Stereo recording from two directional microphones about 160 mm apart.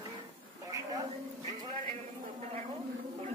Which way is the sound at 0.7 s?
20° right (ahead or behind).